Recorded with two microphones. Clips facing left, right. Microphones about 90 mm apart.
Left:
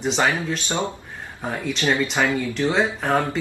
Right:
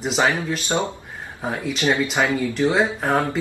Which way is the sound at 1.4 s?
5° right (ahead or behind).